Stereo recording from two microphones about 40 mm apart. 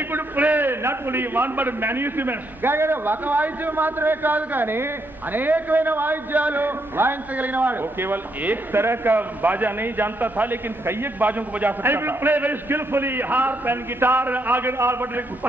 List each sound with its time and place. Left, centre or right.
0.4 s a sound: right
0.7 s a man's voice: right
3.3 s a man's voice: right
7.3 s a man's voice: right
8.7 s a man's voice: right
9.1 s a man's voice: right
11.9 s a man's voice: right
12.7 s a man's voice: right
14.7 s a man's voice: right